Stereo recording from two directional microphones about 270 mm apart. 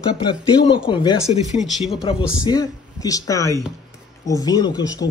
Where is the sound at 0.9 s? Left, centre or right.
Centre.